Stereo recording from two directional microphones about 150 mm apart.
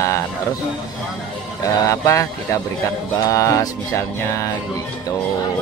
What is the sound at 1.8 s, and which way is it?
Music, 20° left (ahead or behind).